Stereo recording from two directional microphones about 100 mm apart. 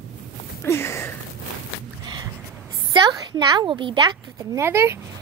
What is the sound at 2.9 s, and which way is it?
A woman's voice, 45° right (ahead or behind).